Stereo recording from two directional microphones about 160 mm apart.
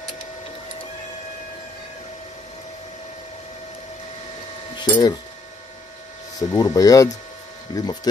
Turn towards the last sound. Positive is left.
turn(degrees=25)  # may be behind; listen again after turning